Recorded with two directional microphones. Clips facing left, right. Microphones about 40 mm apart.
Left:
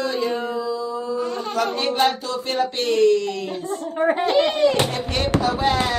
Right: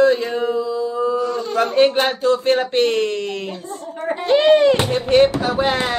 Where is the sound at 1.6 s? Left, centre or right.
Right.